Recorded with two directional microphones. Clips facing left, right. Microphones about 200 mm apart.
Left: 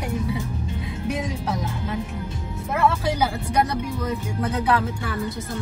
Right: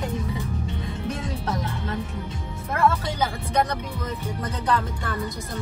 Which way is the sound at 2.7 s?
5° left (ahead or behind).